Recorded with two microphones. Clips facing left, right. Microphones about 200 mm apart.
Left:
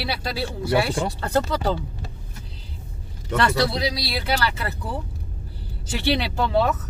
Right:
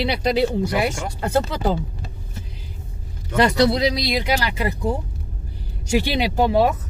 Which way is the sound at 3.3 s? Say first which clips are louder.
Right 5 dB; 20° right (ahead or behind).